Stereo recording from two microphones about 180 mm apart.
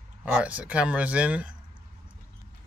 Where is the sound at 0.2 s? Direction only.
5° right (ahead or behind).